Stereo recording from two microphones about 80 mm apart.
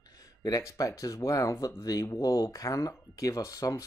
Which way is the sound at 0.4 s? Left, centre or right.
Left.